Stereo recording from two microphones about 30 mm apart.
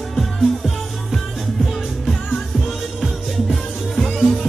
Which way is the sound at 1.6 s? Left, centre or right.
Centre.